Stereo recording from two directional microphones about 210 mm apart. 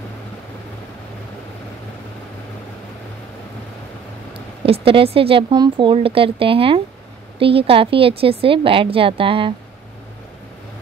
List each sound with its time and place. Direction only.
4.6 s speech: 25° right (ahead or behind)